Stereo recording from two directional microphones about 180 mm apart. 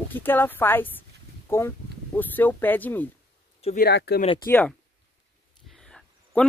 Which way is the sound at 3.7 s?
65° left (ahead or behind).